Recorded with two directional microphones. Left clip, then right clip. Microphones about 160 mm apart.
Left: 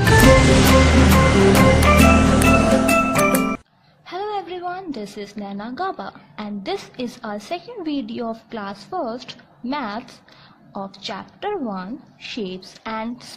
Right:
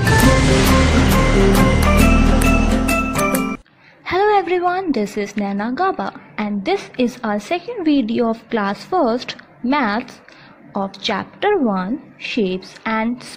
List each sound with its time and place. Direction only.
0.0 s music: centre (ahead or behind)
1.4 s music: centre (ahead or behind)
4.0 s a woman's voice: 25° right (ahead or behind)